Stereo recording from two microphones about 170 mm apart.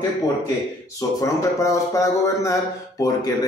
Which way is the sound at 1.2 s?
20° left (ahead or behind).